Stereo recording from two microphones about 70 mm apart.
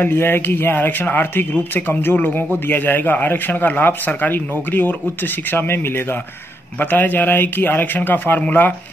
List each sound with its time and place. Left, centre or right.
0.0 s speech: left